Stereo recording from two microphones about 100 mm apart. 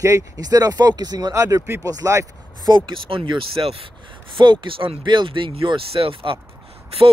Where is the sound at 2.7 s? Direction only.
50° right (ahead or behind).